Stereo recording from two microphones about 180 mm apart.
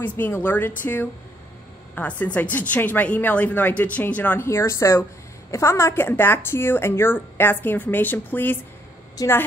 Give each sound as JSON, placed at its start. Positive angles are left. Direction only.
{"t": 0.0, "sound": "a woman's voice", "side_deg": 10}